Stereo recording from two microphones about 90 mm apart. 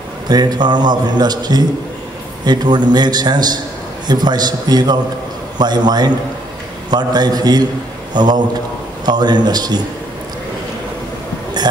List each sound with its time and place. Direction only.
0.3 s a man's voice: 50° right (ahead or behind)